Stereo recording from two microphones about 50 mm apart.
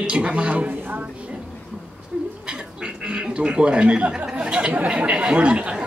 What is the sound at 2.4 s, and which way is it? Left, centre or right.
Duck, centre.